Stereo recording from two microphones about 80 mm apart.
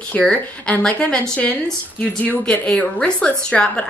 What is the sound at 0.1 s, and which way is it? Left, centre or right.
A woman's voice, centre.